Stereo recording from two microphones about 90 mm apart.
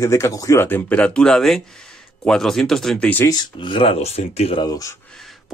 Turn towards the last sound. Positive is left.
turn(degrees=40)  # may be behind; listen again after turning